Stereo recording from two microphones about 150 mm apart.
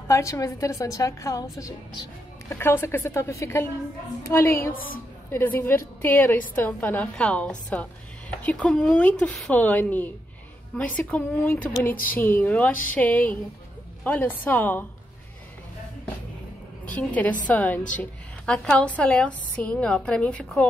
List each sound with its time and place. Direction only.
0.1 s a woman's voice: 20° left (ahead or behind)
2.5 s a woman's voice: 15° left (ahead or behind)
16.8 s a woman's voice: 10° left (ahead or behind)